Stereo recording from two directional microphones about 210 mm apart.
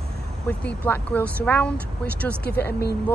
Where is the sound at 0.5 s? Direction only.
5° left (ahead or behind).